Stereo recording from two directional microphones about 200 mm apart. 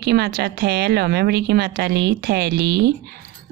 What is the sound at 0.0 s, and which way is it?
Speech, 50° right (ahead or behind).